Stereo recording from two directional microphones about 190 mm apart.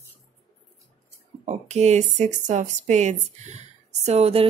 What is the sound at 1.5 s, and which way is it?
Speech, 35° right (ahead or behind).